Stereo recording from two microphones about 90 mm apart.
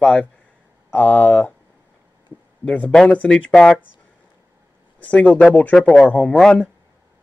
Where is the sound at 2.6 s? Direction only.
15° left (ahead or behind).